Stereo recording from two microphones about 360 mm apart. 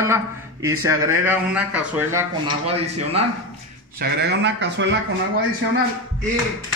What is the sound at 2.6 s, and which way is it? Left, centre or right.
Speech, centre.